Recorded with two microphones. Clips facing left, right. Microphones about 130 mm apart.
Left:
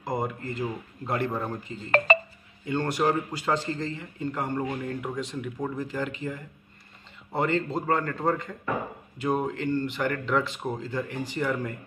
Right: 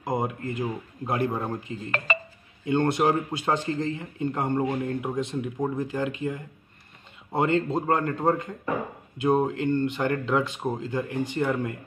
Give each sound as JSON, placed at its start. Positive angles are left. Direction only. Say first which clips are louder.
{"t": 0.0, "sound": "speech", "louder": "right 2 dB", "side_deg": -20}